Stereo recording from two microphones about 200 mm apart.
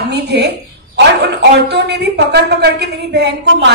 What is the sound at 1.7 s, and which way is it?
A woman's voice, 55° right (ahead or behind).